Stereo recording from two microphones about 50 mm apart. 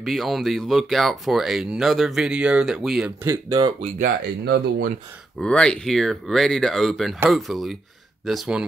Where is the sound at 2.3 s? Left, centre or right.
Right.